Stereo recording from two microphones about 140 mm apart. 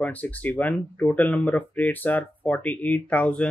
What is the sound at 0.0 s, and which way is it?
Speech, 10° left (ahead or behind).